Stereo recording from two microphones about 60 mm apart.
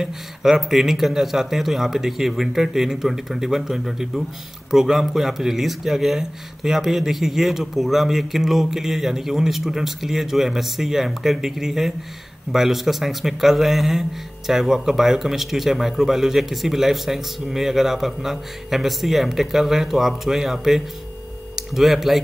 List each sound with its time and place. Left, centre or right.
0.0 s speech: centre